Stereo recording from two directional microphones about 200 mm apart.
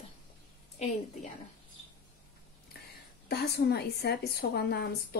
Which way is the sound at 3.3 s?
55° left (ahead or behind).